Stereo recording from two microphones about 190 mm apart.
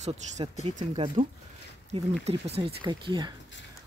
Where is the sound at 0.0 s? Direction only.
35° right (ahead or behind).